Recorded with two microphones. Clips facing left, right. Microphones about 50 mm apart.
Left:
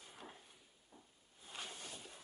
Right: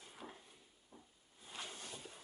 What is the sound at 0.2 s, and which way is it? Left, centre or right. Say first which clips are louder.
Drawer open or close: right 3 dB; centre.